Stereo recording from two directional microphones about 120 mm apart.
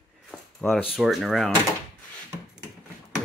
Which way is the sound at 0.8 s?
5° right (ahead or behind).